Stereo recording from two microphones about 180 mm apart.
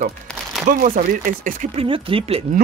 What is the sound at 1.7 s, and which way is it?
Speech, 30° right (ahead or behind).